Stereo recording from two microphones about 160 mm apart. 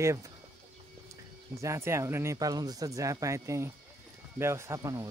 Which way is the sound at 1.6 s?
15° right (ahead or behind).